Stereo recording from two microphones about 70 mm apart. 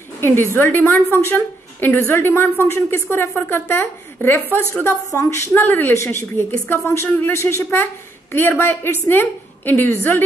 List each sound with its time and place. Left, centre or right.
0.2 s a woman's voice: left
4.5 s a woman's voice: right
5.5 s a woman's voice: left